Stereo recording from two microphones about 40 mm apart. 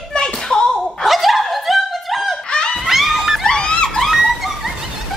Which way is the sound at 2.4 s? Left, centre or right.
Left.